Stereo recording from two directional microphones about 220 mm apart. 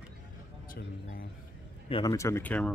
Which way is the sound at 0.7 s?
40° left (ahead or behind).